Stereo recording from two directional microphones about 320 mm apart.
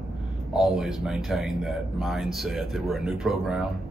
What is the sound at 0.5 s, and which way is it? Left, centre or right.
Speech, centre.